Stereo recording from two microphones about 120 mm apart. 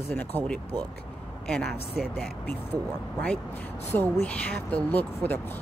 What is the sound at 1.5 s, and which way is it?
Speech, 5° left (ahead or behind).